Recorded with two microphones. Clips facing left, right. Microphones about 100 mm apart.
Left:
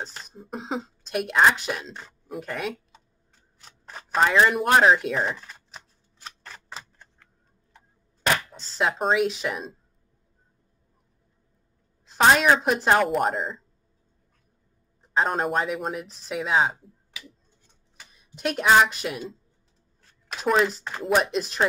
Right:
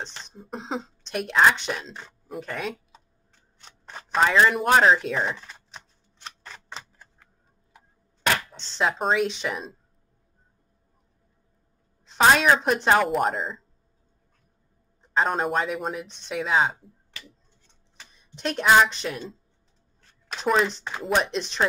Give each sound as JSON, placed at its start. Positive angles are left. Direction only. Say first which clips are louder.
{"t": 0.0, "sound": "speech", "louder": "left 1 dB", "side_deg": 5}
{"t": 3.5, "sound": "a sound", "louder": "even", "side_deg": 0}
{"t": 8.5, "sound": "speech", "louder": "even", "side_deg": 5}
{"t": 12.1, "sound": "a woman's voice", "louder": "even", "side_deg": 0}
{"t": 15.0, "sound": "speech", "louder": "even", "side_deg": 0}